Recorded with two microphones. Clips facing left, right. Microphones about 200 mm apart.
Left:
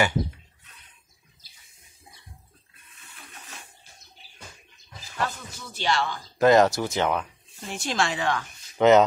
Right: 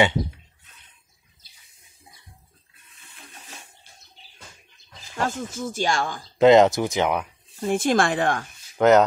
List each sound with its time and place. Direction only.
5.2 s speech: 45° right (ahead or behind)
6.3 s speech: 20° right (ahead or behind)
7.6 s speech: 50° right (ahead or behind)
8.7 s speech: centre (ahead or behind)